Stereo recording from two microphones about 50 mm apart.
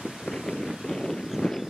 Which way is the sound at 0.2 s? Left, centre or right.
Centre.